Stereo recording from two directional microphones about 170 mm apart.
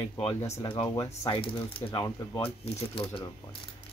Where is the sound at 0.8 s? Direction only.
20° left (ahead or behind).